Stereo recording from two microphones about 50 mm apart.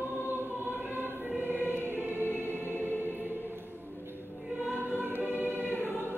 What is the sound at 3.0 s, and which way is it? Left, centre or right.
Choir, right.